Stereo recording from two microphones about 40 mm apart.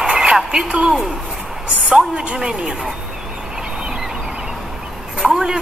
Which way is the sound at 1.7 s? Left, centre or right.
Right.